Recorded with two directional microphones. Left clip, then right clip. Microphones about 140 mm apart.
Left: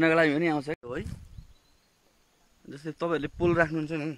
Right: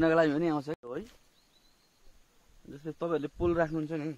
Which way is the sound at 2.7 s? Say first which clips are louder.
Left 3 dB; 20° left (ahead or behind).